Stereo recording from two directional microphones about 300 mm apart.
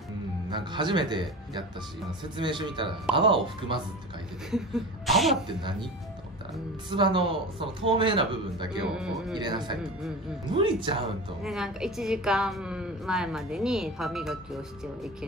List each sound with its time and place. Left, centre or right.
0.6 s speech: centre
2.3 s speech: centre
4.5 s a woman's voice: centre
5.6 s speech: centre
7.0 s speech: centre
8.8 s a woman's voice: centre
9.3 s speech: centre
11.4 s a woman's voice: centre